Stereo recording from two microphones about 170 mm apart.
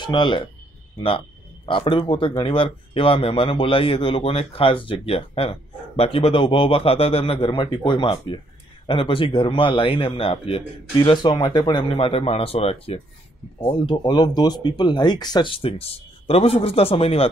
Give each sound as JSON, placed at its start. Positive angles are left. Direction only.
{"t": 0.0, "sound": "speech", "side_deg": 25}